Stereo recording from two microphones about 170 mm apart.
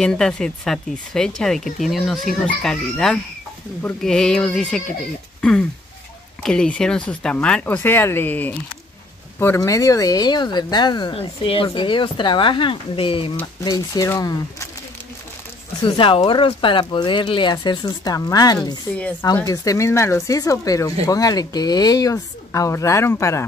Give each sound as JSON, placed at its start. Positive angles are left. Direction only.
{"t": 0.0, "sound": "speech", "side_deg": 5}
{"t": 13.7, "sound": "speech", "side_deg": 20}
{"t": 15.8, "sound": "speech", "side_deg": 30}